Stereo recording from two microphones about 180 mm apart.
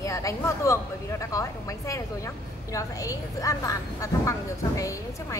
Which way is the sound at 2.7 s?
20° left (ahead or behind).